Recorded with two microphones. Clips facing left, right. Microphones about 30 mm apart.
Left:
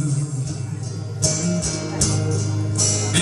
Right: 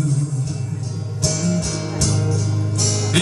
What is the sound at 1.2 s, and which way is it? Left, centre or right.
Music, centre.